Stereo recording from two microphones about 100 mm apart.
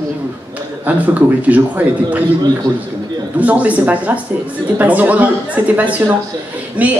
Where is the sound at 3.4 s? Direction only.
15° right (ahead or behind).